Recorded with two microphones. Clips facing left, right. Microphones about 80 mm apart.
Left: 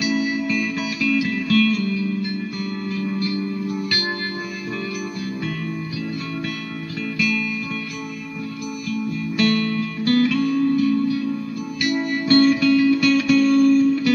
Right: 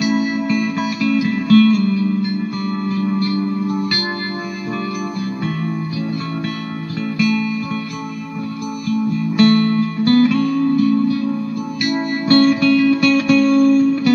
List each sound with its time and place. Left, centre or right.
0.0 s music: right
7.2 s music: right
9.4 s music: right
13.4 s music: right